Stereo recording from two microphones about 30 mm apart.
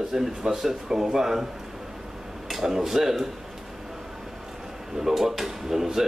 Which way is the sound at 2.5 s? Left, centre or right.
Centre.